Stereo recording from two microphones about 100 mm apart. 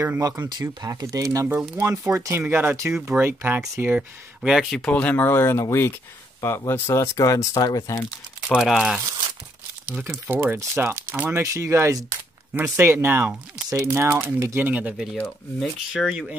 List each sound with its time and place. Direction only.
0.0 s speech: 35° right (ahead or behind)
0.5 s speech: 45° right (ahead or behind); by 4.0 s 20° right (ahead or behind)
4.4 s speech: centre (ahead or behind); by 8.0 s 35° left (ahead or behind)
8.5 s speech: 5° right (ahead or behind)
9.8 s speech: 15° right (ahead or behind); by 12.2 s 35° right (ahead or behind)
12.5 s speech: 20° right (ahead or behind)
14.7 s speech: 15° right (ahead or behind)
15.6 s speech: 5° right (ahead or behind)